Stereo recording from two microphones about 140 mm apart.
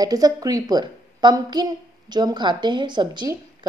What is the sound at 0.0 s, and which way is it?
A woman's voice, 25° right (ahead or behind).